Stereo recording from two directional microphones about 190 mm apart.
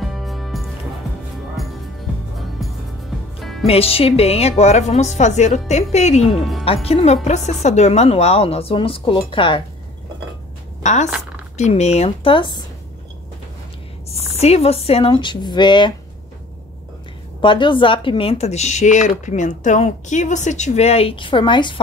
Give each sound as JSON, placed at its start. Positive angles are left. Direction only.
{"t": 0.0, "sound": "music", "side_deg": 0}
{"t": 3.3, "sound": "music", "side_deg": 0}
{"t": 3.6, "sound": "speech", "side_deg": 30}
{"t": 10.8, "sound": "a woman's voice", "side_deg": 40}
{"t": 11.1, "sound": "a sound", "side_deg": -5}
{"t": 11.5, "sound": "speech", "side_deg": 35}
{"t": 14.3, "sound": "speech", "side_deg": 35}
{"t": 17.4, "sound": "speech", "side_deg": 25}